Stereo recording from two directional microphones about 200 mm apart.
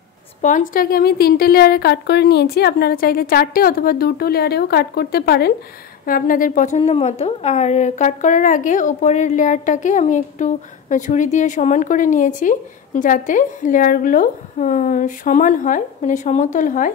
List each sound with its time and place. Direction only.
0.4 s a woman's voice: 40° left (ahead or behind)